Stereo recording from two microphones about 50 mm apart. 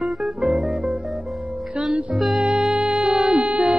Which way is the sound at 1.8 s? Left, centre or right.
Right.